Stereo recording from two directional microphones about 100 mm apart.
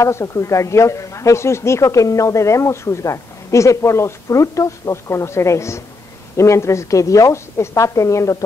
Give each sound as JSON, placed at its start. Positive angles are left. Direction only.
{"t": 0.0, "sound": "a woman's voice", "side_deg": 30}